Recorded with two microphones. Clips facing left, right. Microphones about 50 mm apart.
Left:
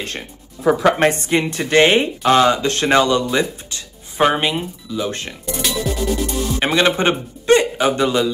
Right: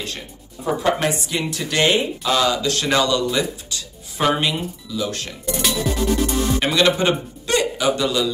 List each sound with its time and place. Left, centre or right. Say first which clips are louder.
0.9 s speech: left 6 dB; left
5.5 s music: even; centre
6.6 s speech: left 3 dB; left